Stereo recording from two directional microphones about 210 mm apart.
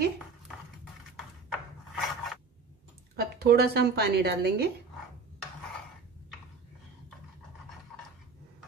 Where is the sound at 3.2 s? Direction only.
50° right (ahead or behind).